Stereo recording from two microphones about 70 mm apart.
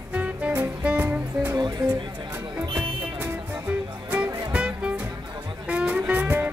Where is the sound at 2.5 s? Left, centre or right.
Right.